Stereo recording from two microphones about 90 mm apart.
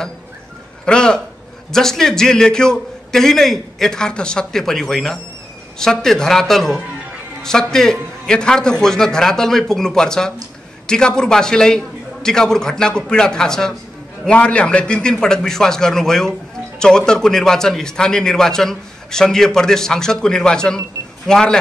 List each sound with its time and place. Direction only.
0.8 s a man's voice: 10° left (ahead or behind)